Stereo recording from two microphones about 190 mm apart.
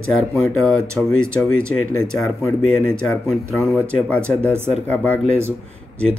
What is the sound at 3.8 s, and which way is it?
Speech, 5° left (ahead or behind).